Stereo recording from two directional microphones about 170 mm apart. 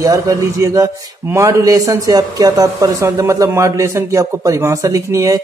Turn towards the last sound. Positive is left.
turn(degrees=-20)  # may be behind; listen again after turning